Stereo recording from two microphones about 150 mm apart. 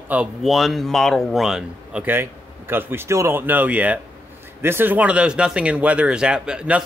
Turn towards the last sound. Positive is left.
turn(degrees=-5)  # may be behind; listen again after turning